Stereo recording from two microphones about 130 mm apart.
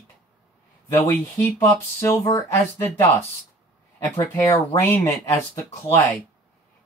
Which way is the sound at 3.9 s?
25° left (ahead or behind).